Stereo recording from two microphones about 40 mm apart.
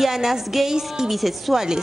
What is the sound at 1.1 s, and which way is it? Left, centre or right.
Speech, centre.